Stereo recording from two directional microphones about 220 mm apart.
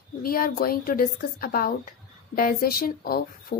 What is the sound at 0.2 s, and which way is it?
Speech, 40° left (ahead or behind).